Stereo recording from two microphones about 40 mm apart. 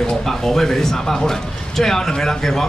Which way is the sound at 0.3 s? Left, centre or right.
Centre.